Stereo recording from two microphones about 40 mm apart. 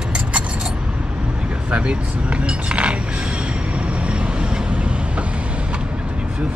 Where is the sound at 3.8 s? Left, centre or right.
Right.